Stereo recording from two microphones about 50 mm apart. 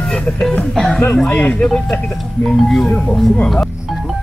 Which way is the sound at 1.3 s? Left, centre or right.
Left.